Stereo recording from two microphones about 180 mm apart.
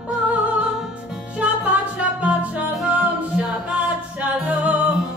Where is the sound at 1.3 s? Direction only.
10° right (ahead or behind).